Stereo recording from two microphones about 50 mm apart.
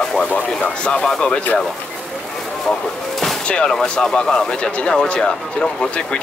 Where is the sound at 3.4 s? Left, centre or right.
Centre.